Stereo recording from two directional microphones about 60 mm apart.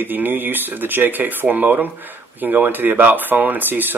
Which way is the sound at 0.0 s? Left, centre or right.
Right.